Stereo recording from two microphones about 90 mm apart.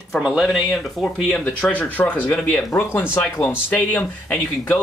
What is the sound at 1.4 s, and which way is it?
Speech, 15° left (ahead or behind).